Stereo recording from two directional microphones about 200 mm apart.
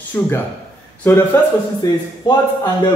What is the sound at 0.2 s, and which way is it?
A man's voice, 10° left (ahead or behind).